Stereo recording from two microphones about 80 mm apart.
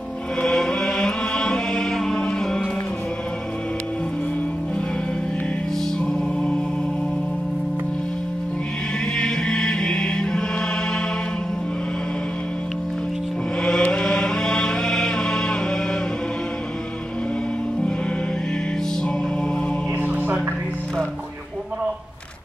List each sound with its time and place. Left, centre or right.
0.4 s chant: centre
6.0 s music: centre
9.1 s chant: centre
13.6 s chant: centre
20.0 s music: right